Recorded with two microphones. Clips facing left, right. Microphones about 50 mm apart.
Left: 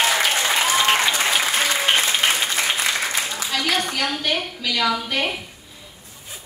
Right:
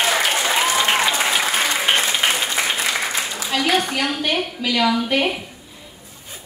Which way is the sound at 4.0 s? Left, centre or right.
Centre.